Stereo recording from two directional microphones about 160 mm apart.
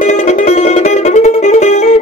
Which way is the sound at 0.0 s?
50° left (ahead or behind).